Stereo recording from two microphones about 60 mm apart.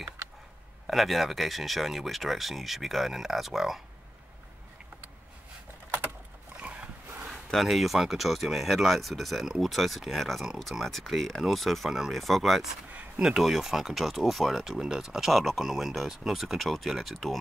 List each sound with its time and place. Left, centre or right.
0.8 s speech: centre
6.6 s dog: right
7.2 s speech: centre